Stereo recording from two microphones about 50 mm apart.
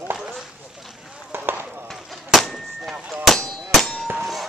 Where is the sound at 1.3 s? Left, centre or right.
Right.